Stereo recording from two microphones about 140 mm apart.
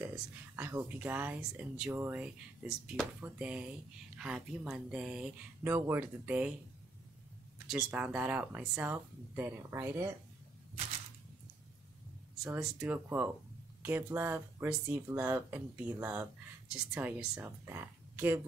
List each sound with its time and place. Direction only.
0.0 s speech: 10° right (ahead or behind)
5.7 s speech: 15° right (ahead or behind)
7.6 s speech: 5° right (ahead or behind)
12.5 s speech: 10° right (ahead or behind)